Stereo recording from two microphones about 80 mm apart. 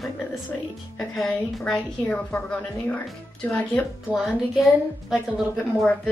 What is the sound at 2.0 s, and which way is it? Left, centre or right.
Speech, centre.